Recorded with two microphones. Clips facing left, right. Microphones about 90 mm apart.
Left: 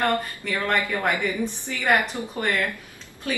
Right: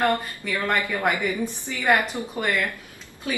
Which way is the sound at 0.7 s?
10° right (ahead or behind).